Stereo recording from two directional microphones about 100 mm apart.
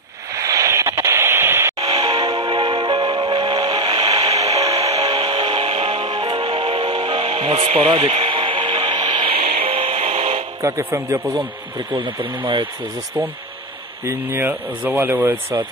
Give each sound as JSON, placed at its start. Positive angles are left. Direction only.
{"t": 0.4, "sound": "radio", "side_deg": -35}
{"t": 1.8, "sound": "music", "side_deg": -40}
{"t": 4.7, "sound": "music", "side_deg": -75}
{"t": 5.0, "sound": "music", "side_deg": -55}
{"t": 7.9, "sound": "radio", "side_deg": -50}
{"t": 9.7, "sound": "music", "side_deg": -80}
{"t": 10.6, "sound": "speech", "side_deg": -25}
{"t": 11.9, "sound": "speech", "side_deg": -55}
{"t": 14.0, "sound": "speech", "side_deg": -25}